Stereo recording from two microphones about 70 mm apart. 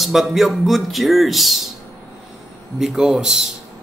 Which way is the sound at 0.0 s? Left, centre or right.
Centre.